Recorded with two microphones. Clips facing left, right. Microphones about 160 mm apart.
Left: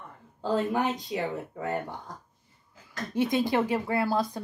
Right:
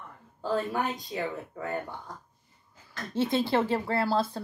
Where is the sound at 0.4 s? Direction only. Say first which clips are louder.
Left 2 dB; 25° left (ahead or behind).